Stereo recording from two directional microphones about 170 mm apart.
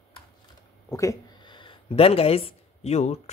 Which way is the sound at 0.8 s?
20° left (ahead or behind).